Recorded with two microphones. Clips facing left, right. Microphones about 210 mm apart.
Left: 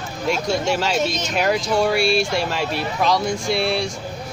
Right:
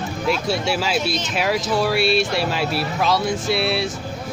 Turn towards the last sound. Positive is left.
turn(degrees=-5)  # may be behind; listen again after turning